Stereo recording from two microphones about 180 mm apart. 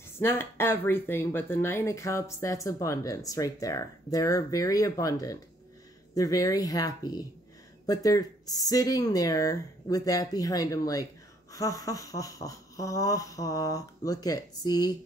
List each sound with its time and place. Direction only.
0.2 s speech: 15° left (ahead or behind)